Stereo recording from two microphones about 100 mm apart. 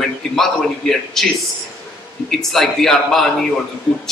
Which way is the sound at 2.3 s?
5° left (ahead or behind).